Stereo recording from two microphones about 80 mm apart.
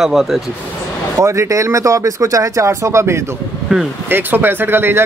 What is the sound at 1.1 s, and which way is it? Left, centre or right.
Speech, right.